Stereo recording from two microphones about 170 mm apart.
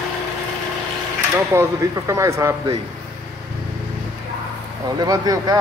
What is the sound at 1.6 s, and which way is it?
Speech, 15° right (ahead or behind).